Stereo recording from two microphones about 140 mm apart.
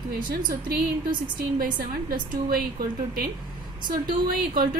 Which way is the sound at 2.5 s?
90° right.